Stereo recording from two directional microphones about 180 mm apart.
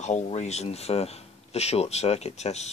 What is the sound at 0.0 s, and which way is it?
Speech, 40° left (ahead or behind).